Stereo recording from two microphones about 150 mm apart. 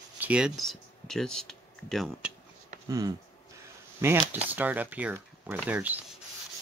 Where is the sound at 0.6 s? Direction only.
Centre (ahead or behind).